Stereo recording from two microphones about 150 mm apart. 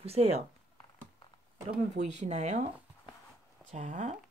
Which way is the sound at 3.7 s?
50° right (ahead or behind).